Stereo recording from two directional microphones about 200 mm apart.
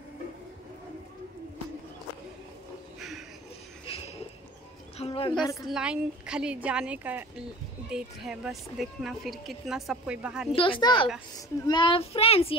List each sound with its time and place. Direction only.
3.0 s a sound: centre (ahead or behind)
4.9 s music: 30° left (ahead or behind)
5.4 s a woman's voice: 15° left (ahead or behind)
5.7 s speech: 5° right (ahead or behind)
10.5 s a child's voice: 25° left (ahead or behind)